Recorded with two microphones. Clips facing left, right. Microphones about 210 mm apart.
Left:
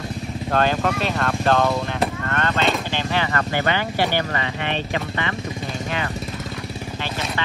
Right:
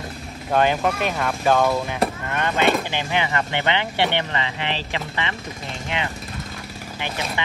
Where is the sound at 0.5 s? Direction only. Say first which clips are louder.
Right 1 dB; 15° right (ahead or behind).